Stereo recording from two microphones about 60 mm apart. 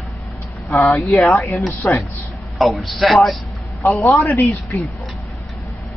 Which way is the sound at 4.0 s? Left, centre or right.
Left.